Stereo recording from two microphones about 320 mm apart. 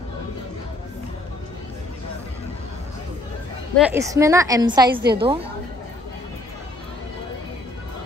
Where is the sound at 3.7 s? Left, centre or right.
Centre.